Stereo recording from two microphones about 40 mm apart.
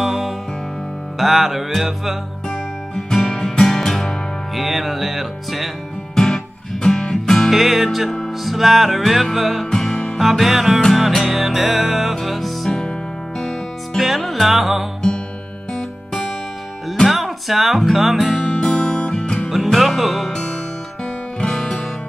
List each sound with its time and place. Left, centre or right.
0.0 s music: centre
3.1 s music: centre
6.1 s music: centre
7.5 s music: centre
9.7 s music: centre
10.1 s music: centre
17.1 s speech: centre
18.5 s guitar: left
18.9 s music: left
19.5 s music: centre
21.0 s music: left